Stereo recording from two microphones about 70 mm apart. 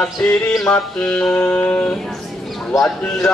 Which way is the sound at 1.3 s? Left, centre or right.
Left.